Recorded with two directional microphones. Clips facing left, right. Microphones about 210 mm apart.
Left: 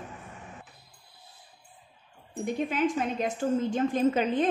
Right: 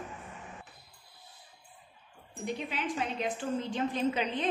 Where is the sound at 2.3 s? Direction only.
50° left (ahead or behind).